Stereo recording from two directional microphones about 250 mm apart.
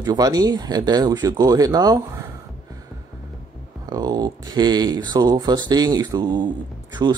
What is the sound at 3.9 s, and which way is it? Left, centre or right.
Speech, centre.